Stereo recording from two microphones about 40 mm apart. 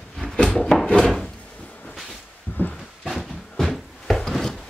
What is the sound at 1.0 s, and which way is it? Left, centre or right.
Wood, centre.